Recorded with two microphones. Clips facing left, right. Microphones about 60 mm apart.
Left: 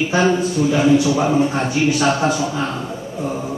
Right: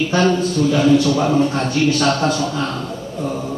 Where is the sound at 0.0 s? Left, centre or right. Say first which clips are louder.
Even; centre.